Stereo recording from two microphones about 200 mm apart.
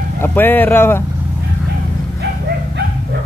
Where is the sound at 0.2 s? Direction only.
10° left (ahead or behind).